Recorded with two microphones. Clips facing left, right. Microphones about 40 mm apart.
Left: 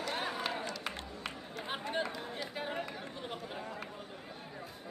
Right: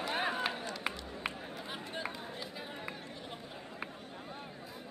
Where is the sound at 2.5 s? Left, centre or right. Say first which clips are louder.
Left 4 dB; left.